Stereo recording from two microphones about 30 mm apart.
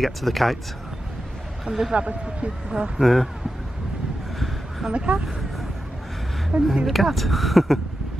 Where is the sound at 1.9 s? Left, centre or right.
Right.